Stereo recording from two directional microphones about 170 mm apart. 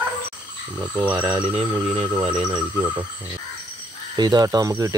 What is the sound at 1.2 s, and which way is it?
Speech, 25° right (ahead or behind).